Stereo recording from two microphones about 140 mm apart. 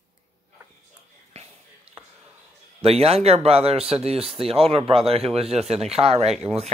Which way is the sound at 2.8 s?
45° right (ahead or behind).